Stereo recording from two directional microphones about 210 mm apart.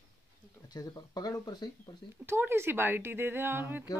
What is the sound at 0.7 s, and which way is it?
Speech, 20° left (ahead or behind).